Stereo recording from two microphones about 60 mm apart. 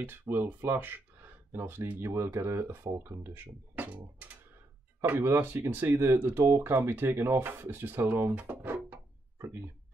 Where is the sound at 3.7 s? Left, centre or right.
Right.